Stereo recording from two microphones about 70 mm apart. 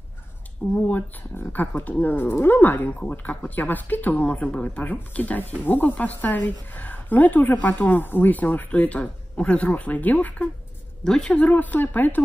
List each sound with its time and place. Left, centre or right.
0.7 s speech: left
11.1 s speech: centre